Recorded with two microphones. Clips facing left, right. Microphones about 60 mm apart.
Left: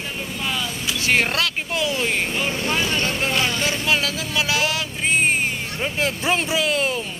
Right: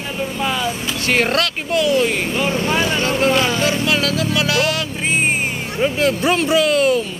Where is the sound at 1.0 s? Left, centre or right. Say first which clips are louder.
Right 2 dB; centre.